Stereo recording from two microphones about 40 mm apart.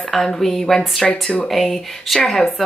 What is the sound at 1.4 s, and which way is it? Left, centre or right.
Speech, centre.